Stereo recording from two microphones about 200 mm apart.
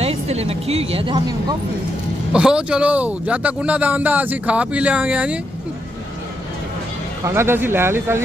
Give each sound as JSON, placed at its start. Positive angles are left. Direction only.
{"t": 0.0, "sound": "speech", "side_deg": -30}
{"t": 2.3, "sound": "speech", "side_deg": -5}
{"t": 7.2, "sound": "speech", "side_deg": -10}